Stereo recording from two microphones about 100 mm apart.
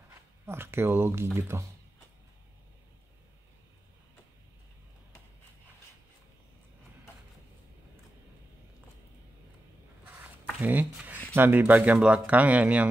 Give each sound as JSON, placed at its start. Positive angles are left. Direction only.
{"t": 0.5, "sound": "speech", "side_deg": -25}
{"t": 10.6, "sound": "speech", "side_deg": -15}